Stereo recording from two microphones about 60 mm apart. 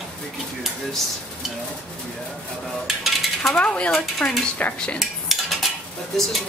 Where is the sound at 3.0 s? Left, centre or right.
Centre.